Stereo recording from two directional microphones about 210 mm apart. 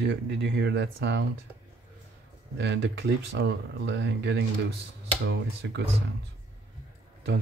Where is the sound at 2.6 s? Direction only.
55° right (ahead or behind).